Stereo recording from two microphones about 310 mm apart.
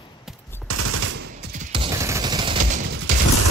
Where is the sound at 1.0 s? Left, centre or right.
Right.